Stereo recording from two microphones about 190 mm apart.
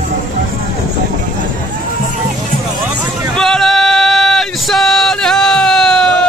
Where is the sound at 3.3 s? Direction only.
Centre (ahead or behind).